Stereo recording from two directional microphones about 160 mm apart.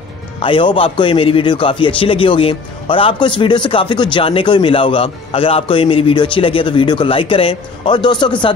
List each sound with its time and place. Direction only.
0.4 s a man's voice: 30° left (ahead or behind)